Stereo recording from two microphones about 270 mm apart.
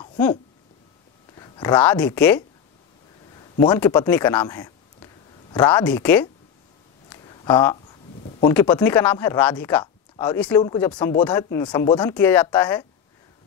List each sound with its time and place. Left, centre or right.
1.3 s speech: centre
7.1 s a sound: centre
8.4 s speech: centre